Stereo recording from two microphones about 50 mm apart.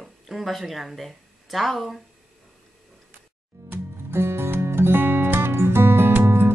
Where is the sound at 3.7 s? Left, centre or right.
Right.